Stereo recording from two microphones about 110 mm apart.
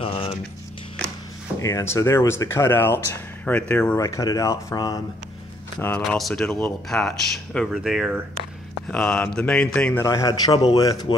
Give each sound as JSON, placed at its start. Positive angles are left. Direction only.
{"t": 0.0, "sound": "a sound", "side_deg": 55}
{"t": 1.6, "sound": "speech", "side_deg": 25}
{"t": 3.9, "sound": "speech", "side_deg": 30}
{"t": 5.8, "sound": "speech", "side_deg": 15}
{"t": 6.0, "sound": "speech", "side_deg": 5}
{"t": 8.8, "sound": "speech", "side_deg": 10}
{"t": 10.0, "sound": "a man's voice", "side_deg": 30}
{"t": 11.1, "sound": "speech", "side_deg": 55}